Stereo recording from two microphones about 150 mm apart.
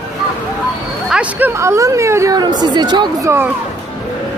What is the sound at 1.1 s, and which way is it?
Speech, 10° right (ahead or behind).